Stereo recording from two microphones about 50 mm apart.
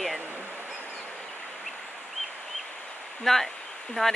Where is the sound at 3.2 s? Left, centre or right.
Centre.